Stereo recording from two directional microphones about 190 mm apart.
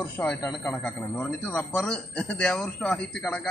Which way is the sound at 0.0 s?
5° left (ahead or behind).